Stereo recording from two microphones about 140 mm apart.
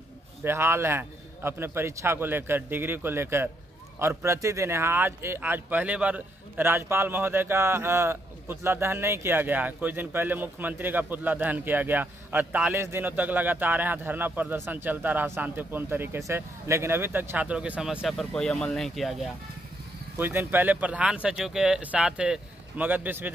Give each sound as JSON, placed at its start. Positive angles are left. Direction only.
{"t": 0.4, "sound": "speech", "side_deg": -20}
{"t": 18.0, "sound": "speech", "side_deg": 0}
{"t": 20.2, "sound": "speech", "side_deg": -15}